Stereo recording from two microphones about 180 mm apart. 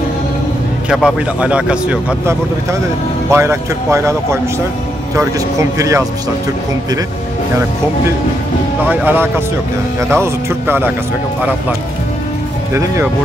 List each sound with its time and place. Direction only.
0.8 s speech: 5° right (ahead or behind)
8.8 s speech: 10° right (ahead or behind)
12.7 s speech: 15° right (ahead or behind)